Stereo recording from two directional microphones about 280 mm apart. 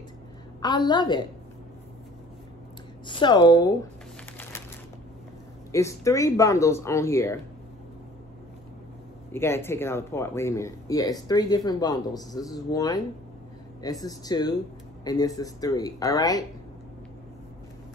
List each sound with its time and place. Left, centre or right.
0.6 s speech: centre
3.1 s speech: centre
5.7 s speech: centre
9.3 s speech: centre